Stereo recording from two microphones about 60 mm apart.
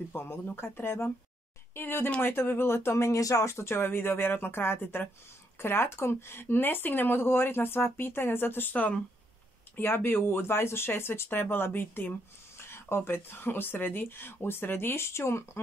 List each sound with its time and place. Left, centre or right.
0.1 s speech: left
3.4 s speech: left